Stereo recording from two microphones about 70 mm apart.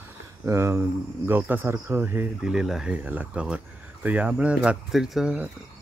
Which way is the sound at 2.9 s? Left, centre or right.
Right.